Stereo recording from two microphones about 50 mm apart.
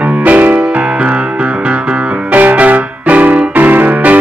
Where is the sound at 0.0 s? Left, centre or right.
Right.